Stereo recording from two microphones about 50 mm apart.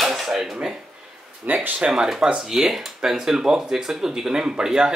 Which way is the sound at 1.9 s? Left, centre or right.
Centre.